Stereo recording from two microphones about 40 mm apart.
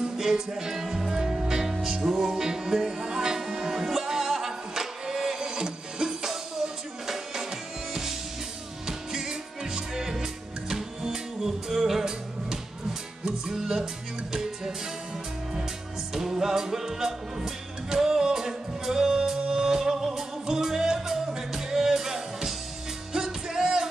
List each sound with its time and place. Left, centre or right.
0.0 s music: centre
1.2 s music: right
1.5 s music: centre
8.8 s music: centre
16.1 s music: centre